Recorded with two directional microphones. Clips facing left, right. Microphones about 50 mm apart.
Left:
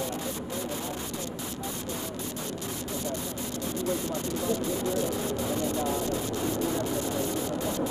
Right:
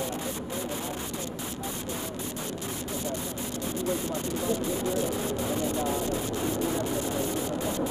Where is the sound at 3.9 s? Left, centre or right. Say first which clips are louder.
Even; right.